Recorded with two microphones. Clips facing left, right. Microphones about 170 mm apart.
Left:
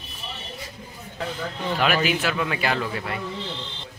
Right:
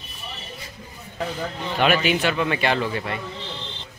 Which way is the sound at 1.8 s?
Centre (ahead or behind).